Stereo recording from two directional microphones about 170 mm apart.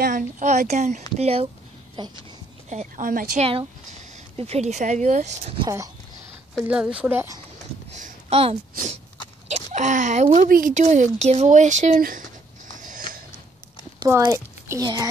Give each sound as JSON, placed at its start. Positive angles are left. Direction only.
{"t": 0.0, "sound": "speech", "side_deg": -45}
{"t": 2.7, "sound": "speech", "side_deg": -45}
{"t": 4.4, "sound": "speech", "side_deg": -40}
{"t": 5.6, "sound": "speech", "side_deg": -20}
{"t": 6.6, "sound": "speech", "side_deg": -5}
{"t": 7.9, "sound": "a sound", "side_deg": -40}
{"t": 9.7, "sound": "speech", "side_deg": -45}
{"t": 12.7, "sound": "mechanisms", "side_deg": -50}
{"t": 14.0, "sound": "a woman's voice", "side_deg": -15}